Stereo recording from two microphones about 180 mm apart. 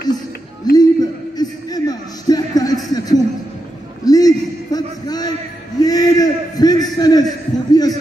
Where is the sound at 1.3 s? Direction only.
20° left (ahead or behind).